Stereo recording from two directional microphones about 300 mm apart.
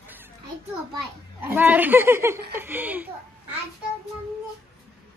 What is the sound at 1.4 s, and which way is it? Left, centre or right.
Speech, centre.